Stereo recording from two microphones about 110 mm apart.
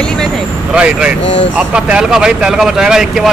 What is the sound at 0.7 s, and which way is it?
Speech, 10° right (ahead or behind).